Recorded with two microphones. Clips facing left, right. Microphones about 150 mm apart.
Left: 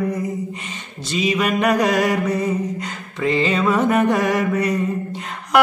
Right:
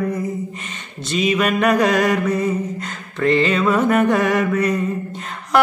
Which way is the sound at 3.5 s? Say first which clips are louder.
Right 1 dB; 20° left (ahead or behind).